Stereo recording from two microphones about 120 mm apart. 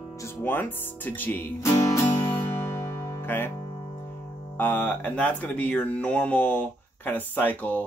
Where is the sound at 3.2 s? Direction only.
15° left (ahead or behind).